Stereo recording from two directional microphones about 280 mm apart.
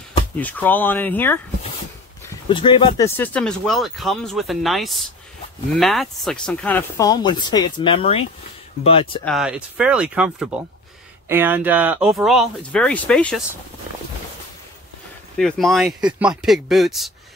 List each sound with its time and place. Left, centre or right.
0.4 s speech: centre
2.4 s speech: centre
9.2 s speech: centre
15.3 s speech: centre